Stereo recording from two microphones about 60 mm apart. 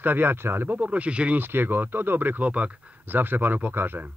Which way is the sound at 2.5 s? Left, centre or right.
Right.